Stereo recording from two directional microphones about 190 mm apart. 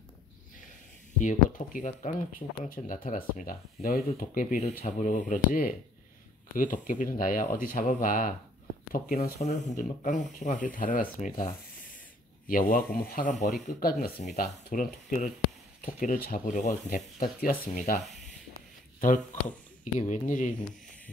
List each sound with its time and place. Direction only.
1.2 s speech: 40° left (ahead or behind)
9.4 s speech: 40° left (ahead or behind)
18.0 s rub: centre (ahead or behind)
18.9 s speech: 45° left (ahead or behind)